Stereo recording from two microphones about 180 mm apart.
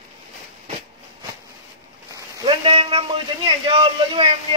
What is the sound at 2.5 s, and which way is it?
Speech, 30° right (ahead or behind).